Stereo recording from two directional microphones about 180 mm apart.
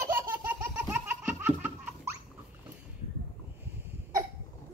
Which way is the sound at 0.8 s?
10° right (ahead or behind).